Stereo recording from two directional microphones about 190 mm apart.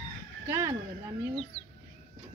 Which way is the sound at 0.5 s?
15° right (ahead or behind).